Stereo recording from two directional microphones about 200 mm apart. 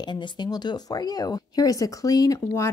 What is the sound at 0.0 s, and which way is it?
Speech, 20° left (ahead or behind).